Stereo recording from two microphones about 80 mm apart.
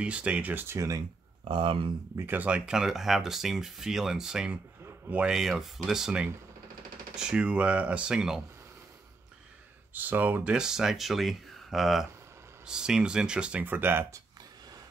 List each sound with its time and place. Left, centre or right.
0.0 s speech: centre
0.7 s speech: right
1.5 s speech: right
2.1 s speech: right; by 4.5 s centre
4.8 s a sound: right
5.2 s speech: centre
9.9 s speech: right
10.5 s speech: centre; by 14.0 s right